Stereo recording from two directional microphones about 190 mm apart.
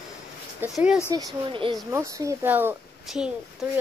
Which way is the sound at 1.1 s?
25° right (ahead or behind).